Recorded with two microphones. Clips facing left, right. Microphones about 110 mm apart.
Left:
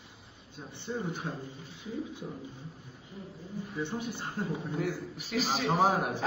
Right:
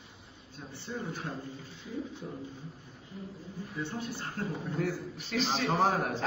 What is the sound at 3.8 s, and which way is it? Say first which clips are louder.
A man's voice: left 1 dB; 15° left (ahead or behind).